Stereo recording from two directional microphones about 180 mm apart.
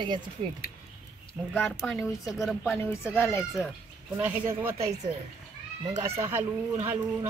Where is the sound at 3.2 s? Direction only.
15° left (ahead or behind).